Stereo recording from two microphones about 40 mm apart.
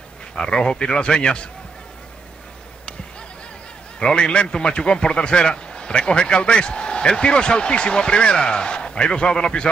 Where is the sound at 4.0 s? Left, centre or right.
Left.